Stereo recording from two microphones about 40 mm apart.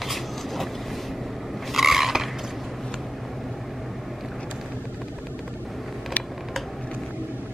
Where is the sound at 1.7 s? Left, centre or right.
Centre.